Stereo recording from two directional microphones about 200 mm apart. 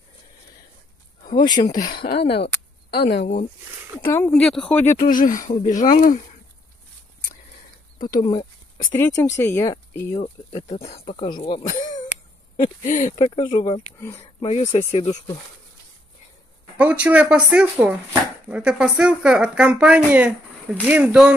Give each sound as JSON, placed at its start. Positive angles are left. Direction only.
{"t": 1.4, "sound": "speech", "side_deg": 20}
{"t": 2.0, "sound": "speech", "side_deg": 35}
{"t": 2.9, "sound": "speech", "side_deg": 55}
{"t": 4.0, "sound": "speech", "side_deg": 10}
{"t": 4.9, "sound": "speech", "side_deg": 40}
{"t": 8.1, "sound": "speech", "side_deg": 20}
{"t": 10.2, "sound": "speech", "side_deg": 35}
{"t": 13.9, "sound": "speech", "side_deg": 10}
{"t": 14.4, "sound": "speech", "side_deg": 35}
{"t": 16.7, "sound": "speech", "side_deg": -5}